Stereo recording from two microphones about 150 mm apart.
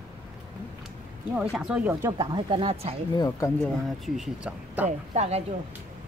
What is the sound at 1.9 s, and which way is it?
Speech, 20° right (ahead or behind).